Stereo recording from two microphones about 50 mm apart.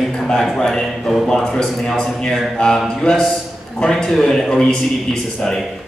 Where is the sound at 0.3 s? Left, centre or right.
Centre.